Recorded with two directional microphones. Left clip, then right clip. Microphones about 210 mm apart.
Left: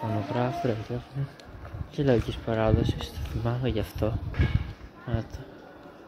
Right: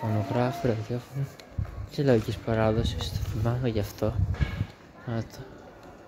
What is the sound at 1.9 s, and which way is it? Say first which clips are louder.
Speech: right 1 dB; 10° right (ahead or behind).